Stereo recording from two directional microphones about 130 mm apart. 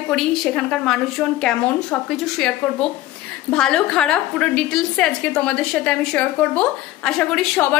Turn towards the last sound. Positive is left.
turn(degrees=5)  # may be behind; listen again after turning